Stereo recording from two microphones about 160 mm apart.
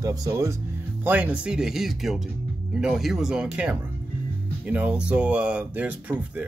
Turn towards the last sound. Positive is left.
turn(degrees=-10)  # may be behind; listen again after turning